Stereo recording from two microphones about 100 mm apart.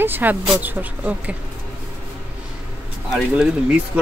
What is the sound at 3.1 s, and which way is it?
Speech, 10° right (ahead or behind).